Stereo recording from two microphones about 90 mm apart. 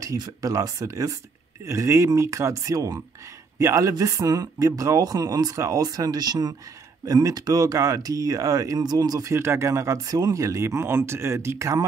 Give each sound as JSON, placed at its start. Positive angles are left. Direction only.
{"t": 0.2, "sound": "speech", "side_deg": -40}